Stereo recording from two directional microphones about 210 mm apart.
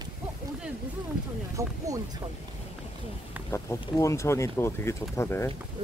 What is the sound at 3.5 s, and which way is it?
Speech, 15° left (ahead or behind).